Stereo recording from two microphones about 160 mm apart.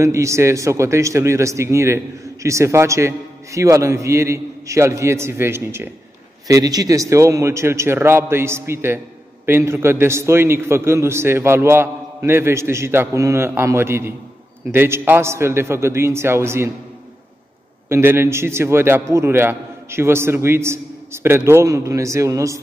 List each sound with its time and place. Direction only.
0.0 s a man's voice: 20° right (ahead or behind)
17.8 s a man's voice: 15° right (ahead or behind)